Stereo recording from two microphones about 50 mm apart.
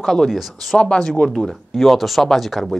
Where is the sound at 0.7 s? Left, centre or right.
Centre.